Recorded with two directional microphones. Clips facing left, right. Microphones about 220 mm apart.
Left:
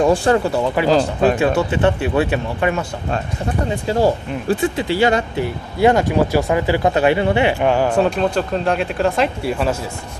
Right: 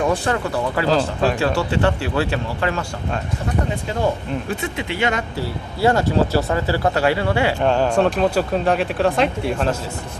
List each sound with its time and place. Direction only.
0.0 s speech: 30° left (ahead or behind)
0.7 s speech: 20° left (ahead or behind)
3.9 s speech: 35° left (ahead or behind)
5.4 s speech: 20° left (ahead or behind)
7.6 s a man's voice: 10° left (ahead or behind)